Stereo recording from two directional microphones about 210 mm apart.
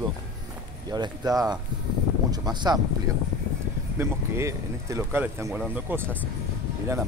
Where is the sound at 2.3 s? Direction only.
20° right (ahead or behind).